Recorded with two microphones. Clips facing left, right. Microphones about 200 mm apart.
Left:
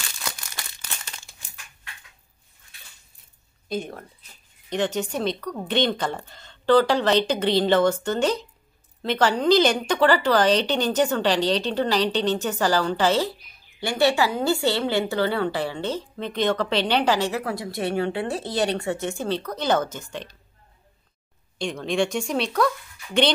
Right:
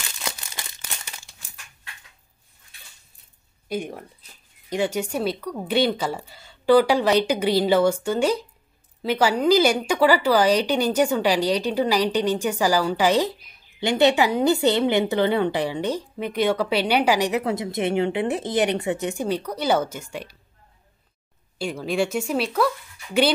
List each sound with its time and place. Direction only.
0.2 s crumpling: 25° right (ahead or behind)
3.6 s speech: 10° right (ahead or behind)
21.5 s speech: 5° right (ahead or behind)